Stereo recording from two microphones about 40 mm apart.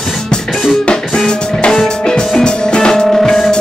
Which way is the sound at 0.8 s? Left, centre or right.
Centre.